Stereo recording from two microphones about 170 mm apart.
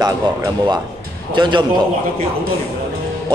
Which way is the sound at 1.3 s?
25° right (ahead or behind).